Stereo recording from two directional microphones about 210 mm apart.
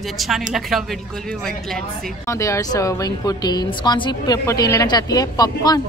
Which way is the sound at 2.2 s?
15° left (ahead or behind).